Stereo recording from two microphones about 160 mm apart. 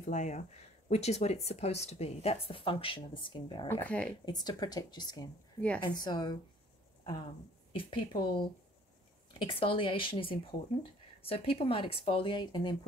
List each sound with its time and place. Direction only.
0.0 s speech: 50° left (ahead or behind); by 3.6 s 30° left (ahead or behind)
3.6 s speech: 10° left (ahead or behind)
4.3 s speech: 25° left (ahead or behind)
7.7 s speech: 30° left (ahead or behind)